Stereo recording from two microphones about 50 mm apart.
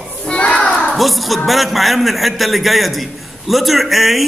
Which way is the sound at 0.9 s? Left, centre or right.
Centre.